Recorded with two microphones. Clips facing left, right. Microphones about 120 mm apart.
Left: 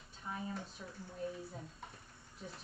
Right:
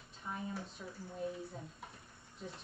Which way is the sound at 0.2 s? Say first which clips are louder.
Even; centre (ahead or behind).